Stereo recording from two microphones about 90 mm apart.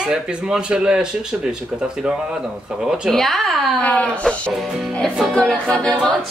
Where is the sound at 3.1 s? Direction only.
5° left (ahead or behind).